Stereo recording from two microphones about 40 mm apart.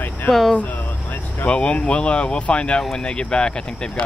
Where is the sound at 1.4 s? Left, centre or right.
Left.